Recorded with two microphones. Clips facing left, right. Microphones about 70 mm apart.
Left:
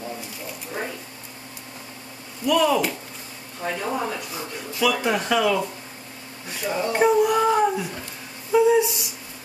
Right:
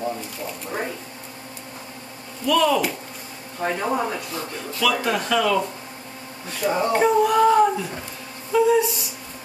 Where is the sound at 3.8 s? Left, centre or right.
Centre.